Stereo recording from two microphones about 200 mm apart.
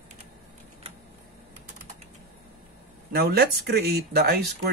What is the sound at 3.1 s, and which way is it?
Speech, 50° right (ahead or behind).